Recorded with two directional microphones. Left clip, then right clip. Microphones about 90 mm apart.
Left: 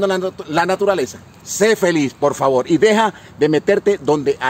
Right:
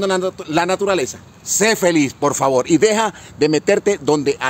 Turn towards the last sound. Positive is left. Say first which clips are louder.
# left 1 dB
turn(degrees=-45)  # may be behind; listen again after turning